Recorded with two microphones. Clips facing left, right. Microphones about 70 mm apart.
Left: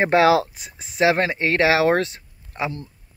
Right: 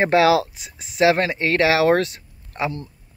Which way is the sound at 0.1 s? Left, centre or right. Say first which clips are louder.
Even; left.